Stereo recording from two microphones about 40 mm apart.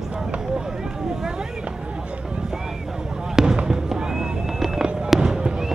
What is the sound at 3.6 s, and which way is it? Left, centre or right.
Fireworks, centre.